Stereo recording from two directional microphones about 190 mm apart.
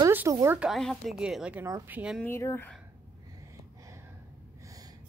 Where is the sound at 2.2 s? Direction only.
15° left (ahead or behind).